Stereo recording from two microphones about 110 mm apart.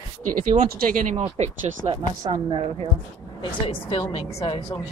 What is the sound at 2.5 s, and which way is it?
Speech, 55° right (ahead or behind).